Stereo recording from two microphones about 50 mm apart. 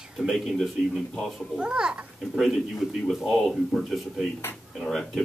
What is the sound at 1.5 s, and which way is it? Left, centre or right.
Speech, centre.